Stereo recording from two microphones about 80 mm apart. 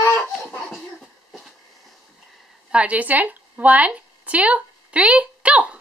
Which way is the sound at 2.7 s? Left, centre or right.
Centre.